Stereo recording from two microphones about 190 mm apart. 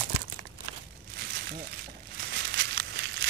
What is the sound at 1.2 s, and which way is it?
Crumpling, 50° right (ahead or behind).